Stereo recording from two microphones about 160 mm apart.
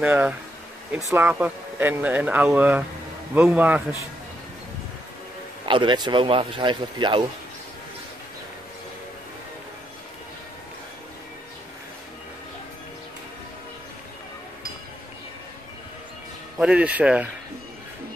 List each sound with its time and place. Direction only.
0.0 s speech: 10° right (ahead or behind)
5.7 s speech: 30° right (ahead or behind)
16.5 s speech: 5° right (ahead or behind)